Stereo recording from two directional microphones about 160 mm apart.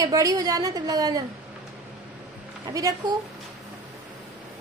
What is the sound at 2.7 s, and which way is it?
Speech, 20° right (ahead or behind).